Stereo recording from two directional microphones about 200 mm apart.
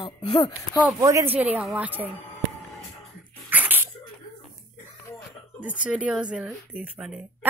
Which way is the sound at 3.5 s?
10° right (ahead or behind).